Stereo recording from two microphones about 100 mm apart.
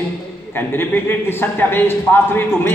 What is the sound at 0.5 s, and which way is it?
A man's voice, 20° left (ahead or behind).